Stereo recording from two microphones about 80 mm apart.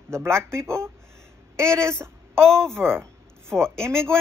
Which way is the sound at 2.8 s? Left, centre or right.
Right.